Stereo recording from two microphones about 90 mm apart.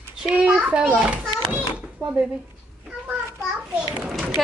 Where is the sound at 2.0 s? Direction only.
25° right (ahead or behind).